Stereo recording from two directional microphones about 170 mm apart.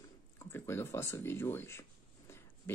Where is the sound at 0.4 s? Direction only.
15° left (ahead or behind).